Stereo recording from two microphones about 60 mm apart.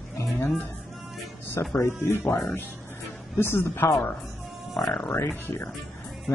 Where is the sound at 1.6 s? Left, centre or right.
Left.